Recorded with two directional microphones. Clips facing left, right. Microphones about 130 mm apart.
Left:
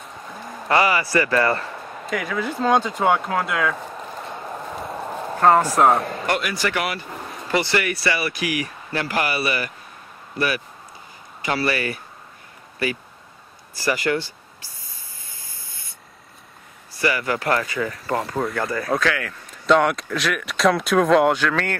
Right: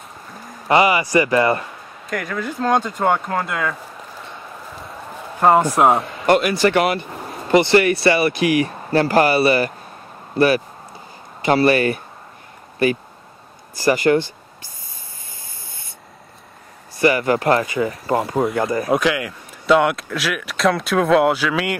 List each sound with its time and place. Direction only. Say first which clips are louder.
0.7 s speech: right 4 dB; 20° right (ahead or behind)
2.0 s speech: even; 5° left (ahead or behind)
5.4 s speech: right 2 dB; 10° right (ahead or behind)
6.2 s speech: right 8 dB; 25° right (ahead or behind)
13.8 s speech: right 6 dB; 45° right (ahead or behind)
17.0 s speech: right 6 dB; 25° right (ahead or behind); by 21.7 s 10° right (ahead or behind)